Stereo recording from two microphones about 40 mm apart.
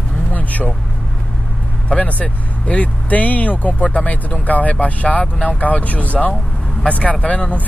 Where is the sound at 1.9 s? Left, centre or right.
Left.